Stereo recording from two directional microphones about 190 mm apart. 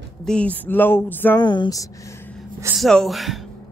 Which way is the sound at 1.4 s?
25° left (ahead or behind).